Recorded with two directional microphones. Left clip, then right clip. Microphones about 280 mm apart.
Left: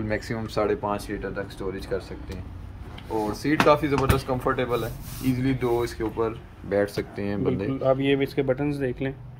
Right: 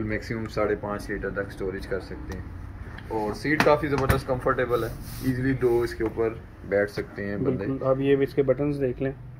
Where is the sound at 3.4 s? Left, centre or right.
Left.